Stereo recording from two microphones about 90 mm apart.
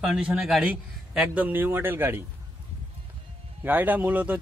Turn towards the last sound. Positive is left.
turn(degrees=-20)  # may be behind; listen again after turning